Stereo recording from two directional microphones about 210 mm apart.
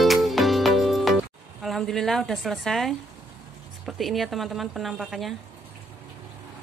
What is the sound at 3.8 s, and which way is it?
A woman's voice, centre (ahead or behind).